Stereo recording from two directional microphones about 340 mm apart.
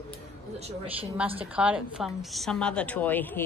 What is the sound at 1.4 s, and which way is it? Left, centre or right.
A woman's voice, centre.